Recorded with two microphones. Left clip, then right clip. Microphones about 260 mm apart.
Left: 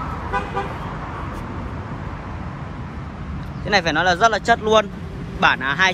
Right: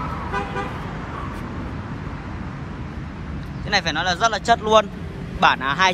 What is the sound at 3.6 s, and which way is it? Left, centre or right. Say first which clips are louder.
Speech: left 4 dB; centre.